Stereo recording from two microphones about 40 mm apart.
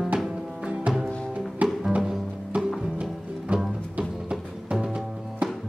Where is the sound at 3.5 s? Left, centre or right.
Right.